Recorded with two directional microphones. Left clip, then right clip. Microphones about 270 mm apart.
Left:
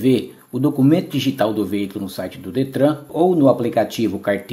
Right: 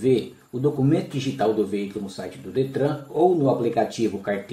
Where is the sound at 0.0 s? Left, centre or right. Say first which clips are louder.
Left 3 dB; left.